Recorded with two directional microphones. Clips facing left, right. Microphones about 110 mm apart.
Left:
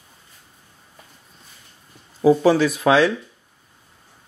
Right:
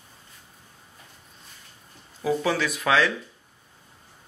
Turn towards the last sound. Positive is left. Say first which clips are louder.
# left 6 dB
turn(degrees=30)  # may be behind; listen again after turning